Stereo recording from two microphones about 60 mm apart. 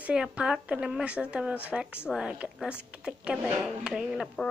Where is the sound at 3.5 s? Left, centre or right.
Centre.